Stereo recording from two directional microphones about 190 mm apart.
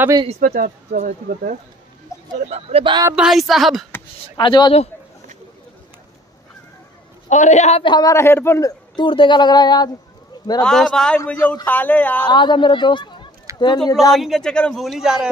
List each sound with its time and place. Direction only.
0.0 s speech: 20° right (ahead or behind)
0.3 s speech: 50° right (ahead or behind)
2.1 s a sound: 15° left (ahead or behind)
2.5 s speech: 30° right (ahead or behind)
3.1 s a man's voice: 5° right (ahead or behind)
4.4 s a man's voice: 25° left (ahead or behind)
7.2 s a man's voice: 40° left (ahead or behind); by 9.8 s 20° left (ahead or behind)
10.6 s a man's voice: 5° left (ahead or behind)
12.3 s a man's voice: 25° left (ahead or behind)
14.1 s a man's voice: centre (ahead or behind)